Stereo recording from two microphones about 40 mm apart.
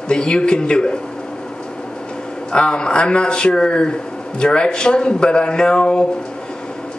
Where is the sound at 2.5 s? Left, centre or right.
Left.